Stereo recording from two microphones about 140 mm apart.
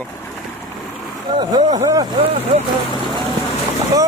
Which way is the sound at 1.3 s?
30° right (ahead or behind).